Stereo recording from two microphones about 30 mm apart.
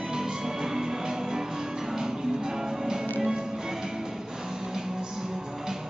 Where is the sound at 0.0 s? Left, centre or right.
Right.